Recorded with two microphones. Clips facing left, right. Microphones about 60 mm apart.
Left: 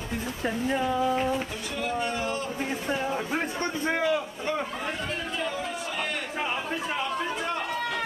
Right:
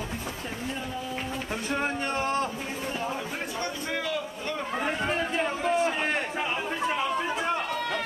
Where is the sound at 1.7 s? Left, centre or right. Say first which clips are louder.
Right 1 dB; right.